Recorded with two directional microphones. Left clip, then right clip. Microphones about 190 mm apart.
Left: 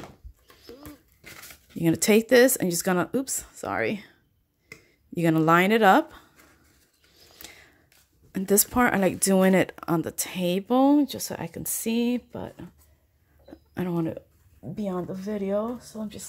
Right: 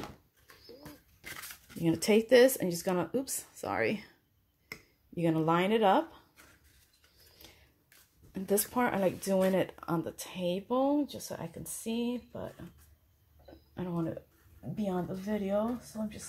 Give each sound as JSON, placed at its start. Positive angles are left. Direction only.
{"t": 1.2, "sound": "crumpling", "side_deg": -5}
{"t": 1.8, "sound": "speech", "side_deg": 40}
{"t": 5.1, "sound": "speech", "side_deg": 45}
{"t": 7.3, "sound": "a sound", "side_deg": 50}
{"t": 8.3, "sound": "speech", "side_deg": 45}
{"t": 13.7, "sound": "speech", "side_deg": 55}